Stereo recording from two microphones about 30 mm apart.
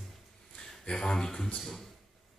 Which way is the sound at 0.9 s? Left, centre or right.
Left.